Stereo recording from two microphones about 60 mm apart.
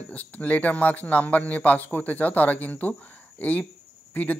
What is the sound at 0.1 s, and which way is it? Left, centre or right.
A man's voice, left.